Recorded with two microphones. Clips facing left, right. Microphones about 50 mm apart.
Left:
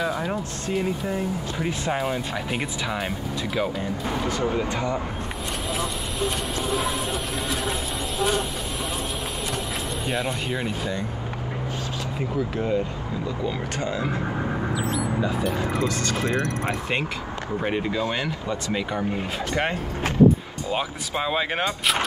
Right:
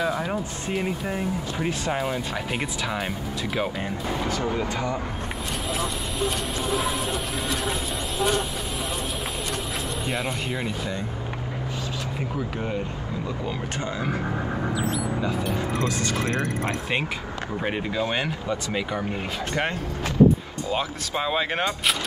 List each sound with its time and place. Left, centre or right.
0.0 s music: centre
1.7 s speech: centre
4.4 s speech: left
5.7 s speech: centre
10.0 s speech: centre
15.2 s speech: centre
17.6 s speech: centre
18.0 s speech: right
18.5 s speech: centre
20.7 s speech: centre